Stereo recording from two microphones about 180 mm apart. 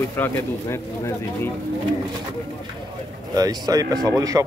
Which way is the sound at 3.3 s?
20° right (ahead or behind).